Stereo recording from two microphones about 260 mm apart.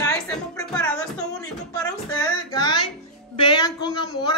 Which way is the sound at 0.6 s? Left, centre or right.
Centre.